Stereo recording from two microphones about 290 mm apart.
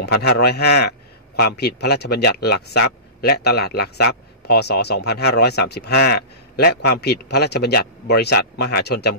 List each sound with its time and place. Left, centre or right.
0.0 s a man's voice: left